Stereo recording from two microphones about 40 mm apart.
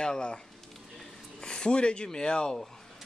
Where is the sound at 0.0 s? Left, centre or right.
Left.